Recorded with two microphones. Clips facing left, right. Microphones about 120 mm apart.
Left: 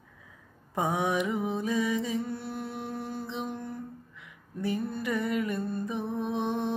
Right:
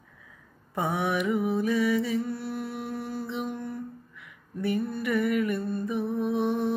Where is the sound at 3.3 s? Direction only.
25° left (ahead or behind).